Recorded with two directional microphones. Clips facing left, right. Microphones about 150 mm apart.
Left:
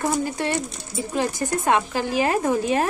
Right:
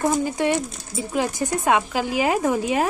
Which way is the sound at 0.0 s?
20° right (ahead or behind).